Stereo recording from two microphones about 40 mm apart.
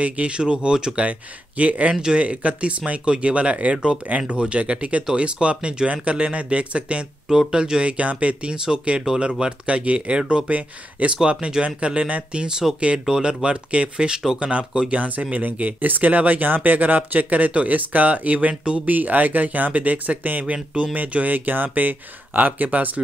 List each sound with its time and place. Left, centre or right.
0.0 s speech: right
1.6 s speech: right
3.7 s speech: right
7.2 s speech: centre
7.8 s speech: right
9.1 s speech: right
10.5 s speech: right
14.9 s speech: right
18.9 s speech: right
20.5 s speech: right
20.9 s speech: right